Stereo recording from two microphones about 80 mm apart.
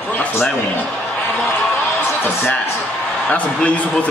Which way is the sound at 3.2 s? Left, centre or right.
Centre.